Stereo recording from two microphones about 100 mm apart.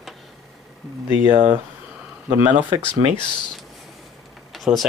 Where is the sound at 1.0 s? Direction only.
20° right (ahead or behind).